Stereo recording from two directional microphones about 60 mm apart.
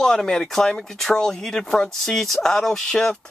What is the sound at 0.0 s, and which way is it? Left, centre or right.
Speech, centre.